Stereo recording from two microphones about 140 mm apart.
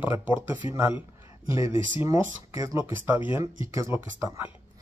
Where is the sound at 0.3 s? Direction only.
35° left (ahead or behind).